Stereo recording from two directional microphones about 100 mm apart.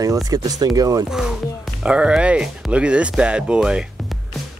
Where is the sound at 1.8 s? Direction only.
10° right (ahead or behind).